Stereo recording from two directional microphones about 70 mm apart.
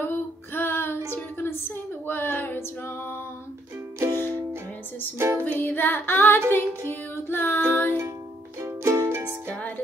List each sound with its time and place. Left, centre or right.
0.0 s music: left
5.4 s music: left
8.5 s music: right
9.5 s music: left